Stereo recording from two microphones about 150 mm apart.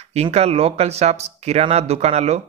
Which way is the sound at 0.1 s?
45° right (ahead or behind).